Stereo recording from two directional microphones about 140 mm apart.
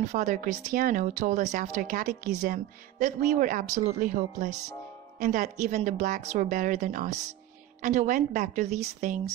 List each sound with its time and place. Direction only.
0.1 s a woman's voice: 60° right (ahead or behind)